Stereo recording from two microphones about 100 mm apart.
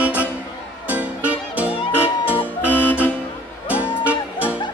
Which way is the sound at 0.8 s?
15° right (ahead or behind).